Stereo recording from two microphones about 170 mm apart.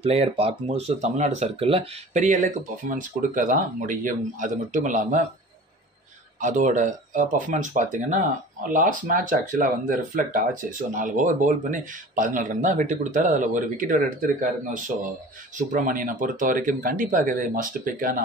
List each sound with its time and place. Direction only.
0.0 s speech: 35° right (ahead or behind)
6.4 s speech: 45° right (ahead or behind)